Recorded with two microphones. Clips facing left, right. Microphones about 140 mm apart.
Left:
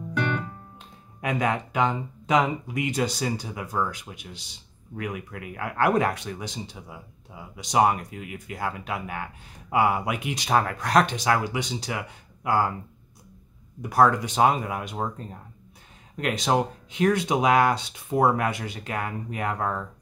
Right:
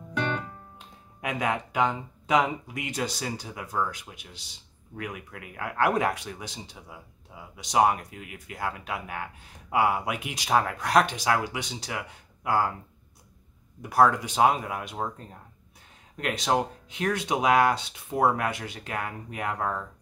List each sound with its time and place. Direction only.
0.1 s music: 20° right (ahead or behind)
0.7 s music: 5° right (ahead or behind)
2.2 s speech: 5° right (ahead or behind)
13.8 s speech: 5° right (ahead or behind)